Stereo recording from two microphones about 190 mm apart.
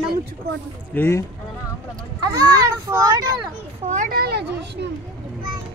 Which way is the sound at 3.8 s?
45° right (ahead or behind).